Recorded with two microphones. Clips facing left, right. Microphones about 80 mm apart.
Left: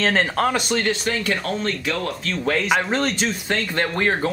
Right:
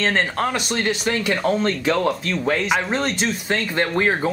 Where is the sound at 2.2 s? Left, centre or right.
Centre.